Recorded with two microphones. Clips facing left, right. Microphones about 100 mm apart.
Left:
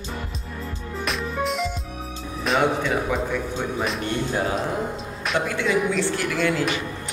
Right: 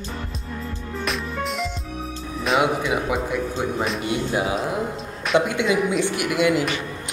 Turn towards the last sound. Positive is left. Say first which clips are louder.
# right 3 dB
turn(degrees=-10)  # may be behind; listen again after turning